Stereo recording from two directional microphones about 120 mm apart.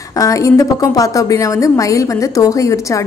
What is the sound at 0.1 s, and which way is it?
A woman's voice, 25° left (ahead or behind).